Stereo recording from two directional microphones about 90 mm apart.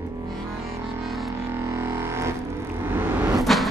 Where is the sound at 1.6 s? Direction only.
40° right (ahead or behind).